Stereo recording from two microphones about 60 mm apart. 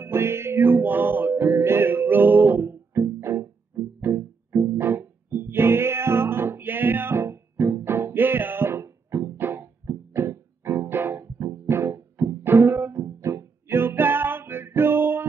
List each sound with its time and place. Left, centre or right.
0.0 s music: right